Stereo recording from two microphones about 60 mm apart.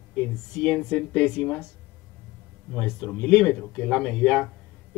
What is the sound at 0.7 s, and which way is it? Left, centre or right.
Speech, centre.